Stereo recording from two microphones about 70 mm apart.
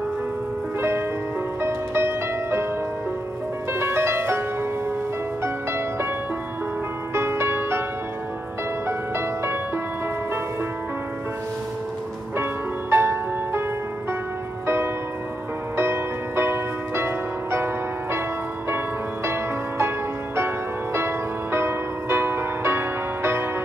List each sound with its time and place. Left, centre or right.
0.7 s music: right
3.7 s music: right
5.4 s music: right
7.2 s music: right
8.8 s music: right
12.9 s music: right
15.7 s music: right
19.2 s music: right